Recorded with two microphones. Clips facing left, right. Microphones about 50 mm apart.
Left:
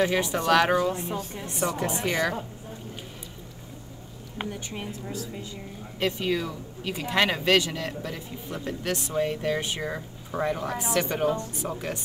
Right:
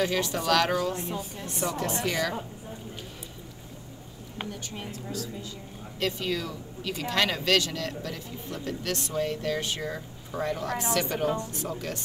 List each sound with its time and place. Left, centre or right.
0.0 s speech: centre
4.4 s speech: centre